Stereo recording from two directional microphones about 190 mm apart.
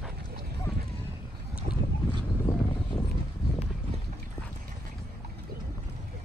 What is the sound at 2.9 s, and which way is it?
Boat, 10° left (ahead or behind).